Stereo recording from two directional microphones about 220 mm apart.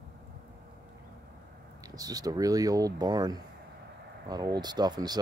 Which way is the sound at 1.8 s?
15° right (ahead or behind).